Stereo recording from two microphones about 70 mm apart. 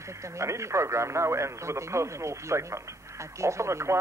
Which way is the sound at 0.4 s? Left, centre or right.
Right.